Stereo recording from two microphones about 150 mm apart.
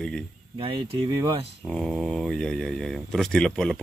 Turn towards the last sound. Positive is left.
turn(degrees=5)  # may be behind; listen again after turning